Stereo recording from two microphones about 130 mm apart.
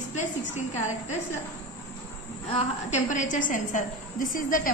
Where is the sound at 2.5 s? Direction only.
65° left (ahead or behind); by 4.7 s 90° left.